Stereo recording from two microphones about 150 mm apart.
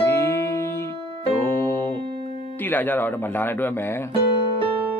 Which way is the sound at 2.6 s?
10° left (ahead or behind).